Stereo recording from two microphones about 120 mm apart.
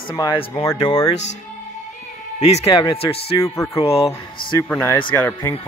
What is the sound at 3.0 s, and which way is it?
A man's voice, 55° left (ahead or behind).